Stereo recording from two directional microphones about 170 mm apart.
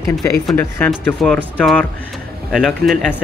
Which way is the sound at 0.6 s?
10° left (ahead or behind).